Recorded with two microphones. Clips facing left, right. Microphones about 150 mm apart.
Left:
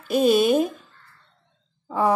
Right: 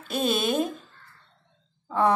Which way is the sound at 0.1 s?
10° left (ahead or behind).